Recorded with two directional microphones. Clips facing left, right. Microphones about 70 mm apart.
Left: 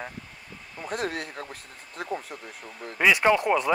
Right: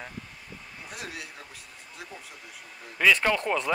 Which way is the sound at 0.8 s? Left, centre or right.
Left.